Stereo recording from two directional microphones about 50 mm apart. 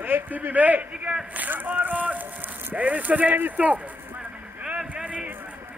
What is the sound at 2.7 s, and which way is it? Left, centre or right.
Speech, right.